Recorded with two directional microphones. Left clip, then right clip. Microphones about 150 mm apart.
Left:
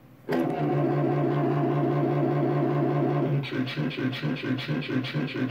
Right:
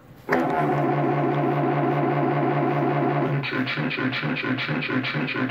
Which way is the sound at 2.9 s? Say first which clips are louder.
Right 4 dB; 15° left (ahead or behind).